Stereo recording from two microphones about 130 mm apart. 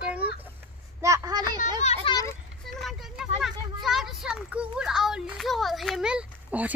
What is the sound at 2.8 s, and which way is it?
Speech, centre (ahead or behind).